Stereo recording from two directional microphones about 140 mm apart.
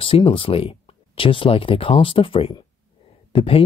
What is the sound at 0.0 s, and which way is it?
Speech, 40° left (ahead or behind).